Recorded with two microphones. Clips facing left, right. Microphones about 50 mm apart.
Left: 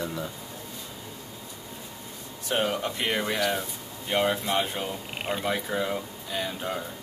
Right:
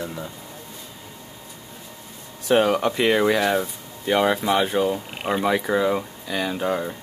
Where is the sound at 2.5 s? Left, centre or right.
Right.